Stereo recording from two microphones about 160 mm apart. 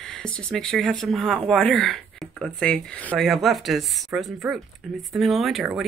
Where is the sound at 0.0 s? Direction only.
5° left (ahead or behind).